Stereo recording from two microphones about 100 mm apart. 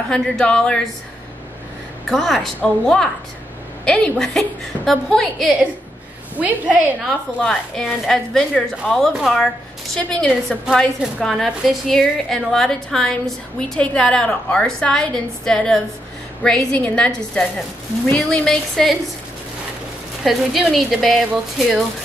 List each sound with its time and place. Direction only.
0.1 s a woman's voice: 5° left (ahead or behind)
2.0 s a woman's voice: 5° left (ahead or behind)
6.3 s a woman's voice: 15° right (ahead or behind)
7.4 s a woman's voice: 5° left (ahead or behind)
20.2 s a woman's voice: centre (ahead or behind)